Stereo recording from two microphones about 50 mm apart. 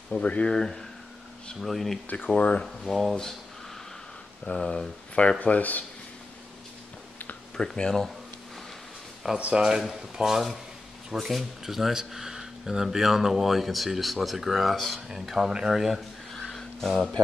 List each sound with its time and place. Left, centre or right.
0.2 s speech: left
0.6 s speech: centre
2.3 s speech: left
2.6 s speech: centre
4.5 s speech: centre
5.4 s speech: left
7.5 s speech: centre
9.4 s speech: centre
16.3 s a sound: centre